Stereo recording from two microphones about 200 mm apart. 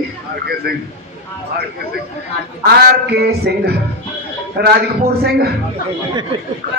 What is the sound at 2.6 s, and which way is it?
Speech, 55° right (ahead or behind).